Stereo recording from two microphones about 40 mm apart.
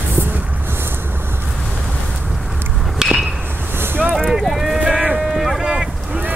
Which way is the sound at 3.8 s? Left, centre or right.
Right.